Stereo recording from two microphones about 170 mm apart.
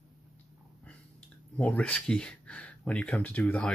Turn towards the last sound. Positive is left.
turn(degrees=5)  # may be behind; listen again after turning